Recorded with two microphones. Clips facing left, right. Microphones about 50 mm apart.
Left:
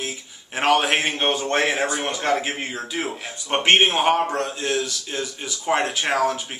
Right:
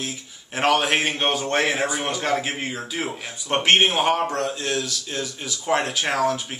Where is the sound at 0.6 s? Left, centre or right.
Centre.